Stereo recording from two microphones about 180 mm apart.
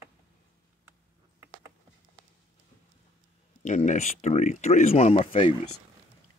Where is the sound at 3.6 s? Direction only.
45° left (ahead or behind).